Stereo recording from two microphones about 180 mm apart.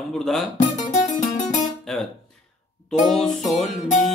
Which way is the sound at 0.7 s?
40° left (ahead or behind).